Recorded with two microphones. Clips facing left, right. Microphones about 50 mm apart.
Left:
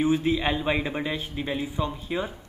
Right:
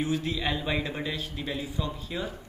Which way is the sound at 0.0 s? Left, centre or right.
Left.